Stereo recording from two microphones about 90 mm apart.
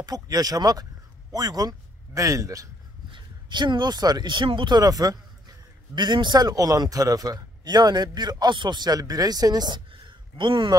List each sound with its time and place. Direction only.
0.0 s a man's voice: 45° right (ahead or behind)
3.1 s a man's voice: 60° right (ahead or behind); by 5.2 s 45° right (ahead or behind)
5.9 s a man's voice: 55° right (ahead or behind)